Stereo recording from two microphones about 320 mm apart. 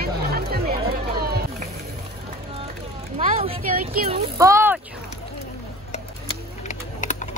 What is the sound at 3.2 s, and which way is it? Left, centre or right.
A woman's voice, right.